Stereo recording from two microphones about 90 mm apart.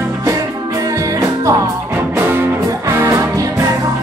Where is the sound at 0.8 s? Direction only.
40° right (ahead or behind).